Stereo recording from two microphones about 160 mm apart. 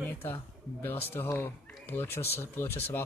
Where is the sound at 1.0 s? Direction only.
15° left (ahead or behind).